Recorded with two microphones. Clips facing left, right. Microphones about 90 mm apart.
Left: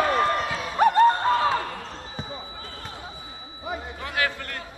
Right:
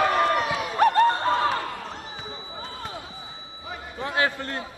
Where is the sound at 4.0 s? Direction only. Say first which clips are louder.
Right 4 dB; 25° right (ahead or behind).